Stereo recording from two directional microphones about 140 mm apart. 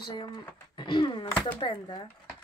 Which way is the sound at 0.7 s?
35° left (ahead or behind).